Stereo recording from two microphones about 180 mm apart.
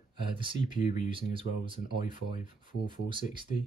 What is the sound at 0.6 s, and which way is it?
Speech, 45° left (ahead or behind).